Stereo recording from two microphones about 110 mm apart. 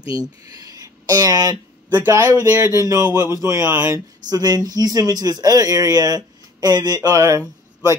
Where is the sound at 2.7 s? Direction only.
30° right (ahead or behind).